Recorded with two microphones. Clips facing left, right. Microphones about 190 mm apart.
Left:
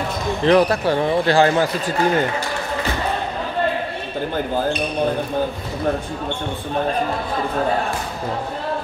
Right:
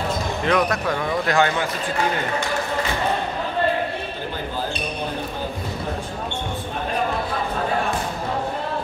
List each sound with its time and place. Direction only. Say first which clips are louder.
0.4 s speech: left 7 dB; 30° left (ahead or behind)